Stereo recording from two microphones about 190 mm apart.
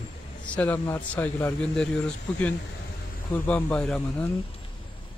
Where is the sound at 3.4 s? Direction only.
5° left (ahead or behind).